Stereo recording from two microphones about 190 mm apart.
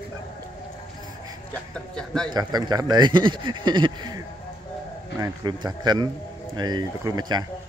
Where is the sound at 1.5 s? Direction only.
5° left (ahead or behind).